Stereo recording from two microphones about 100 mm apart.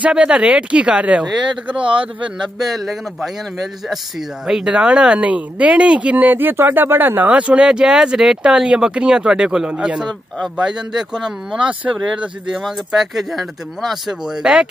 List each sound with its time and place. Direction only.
0.0 s speech: 10° right (ahead or behind)
1.8 s speech: 60° right (ahead or behind)
2.6 s speech: centre (ahead or behind)
4.5 s speech: 10° right (ahead or behind)